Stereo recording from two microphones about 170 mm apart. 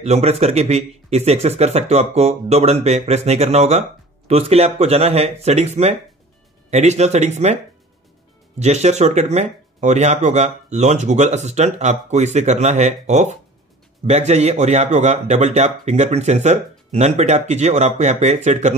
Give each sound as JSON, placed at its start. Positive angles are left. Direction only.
{"t": 0.0, "sound": "speech", "side_deg": -40}
{"t": 8.5, "sound": "speech", "side_deg": -40}